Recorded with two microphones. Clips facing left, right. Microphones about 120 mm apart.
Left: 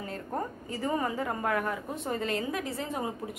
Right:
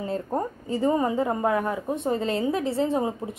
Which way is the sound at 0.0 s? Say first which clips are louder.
Right 7 dB; 25° right (ahead or behind).